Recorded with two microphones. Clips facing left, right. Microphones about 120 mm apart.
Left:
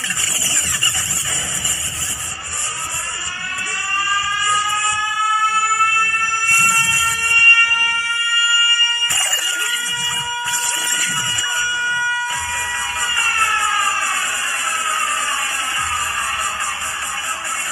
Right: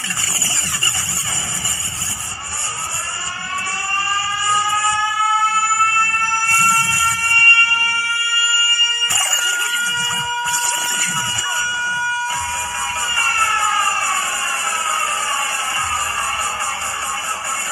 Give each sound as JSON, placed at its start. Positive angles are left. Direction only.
{"t": 4.5, "sound": "train", "side_deg": -25}
{"t": 8.5, "sound": "a sound", "side_deg": -35}
{"t": 13.1, "sound": "emergency vehicle", "side_deg": -30}